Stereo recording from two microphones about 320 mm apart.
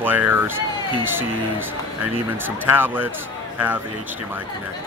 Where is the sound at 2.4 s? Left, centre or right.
Centre.